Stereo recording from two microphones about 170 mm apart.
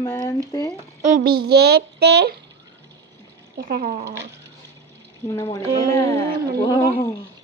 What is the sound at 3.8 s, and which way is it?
Speech, 40° right (ahead or behind).